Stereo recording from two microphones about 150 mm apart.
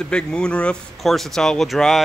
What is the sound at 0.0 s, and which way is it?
Speech, 5° left (ahead or behind).